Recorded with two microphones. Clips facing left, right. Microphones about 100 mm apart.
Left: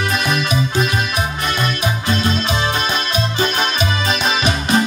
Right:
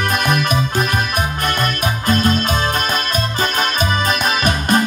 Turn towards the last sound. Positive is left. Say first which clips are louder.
# right 1 dB
turn(degrees=-50)  # may be behind; listen again after turning